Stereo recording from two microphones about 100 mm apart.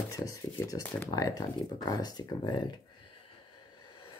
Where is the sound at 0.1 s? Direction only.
35° left (ahead or behind).